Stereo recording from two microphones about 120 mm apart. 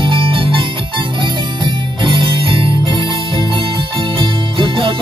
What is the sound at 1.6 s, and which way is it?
Music, 45° right (ahead or behind).